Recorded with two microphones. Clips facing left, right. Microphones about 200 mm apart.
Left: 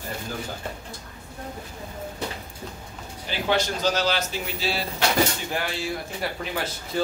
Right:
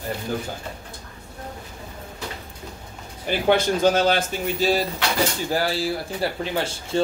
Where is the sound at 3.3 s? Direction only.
55° right (ahead or behind).